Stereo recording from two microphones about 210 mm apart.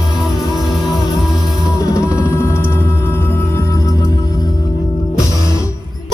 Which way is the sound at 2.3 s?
10° left (ahead or behind).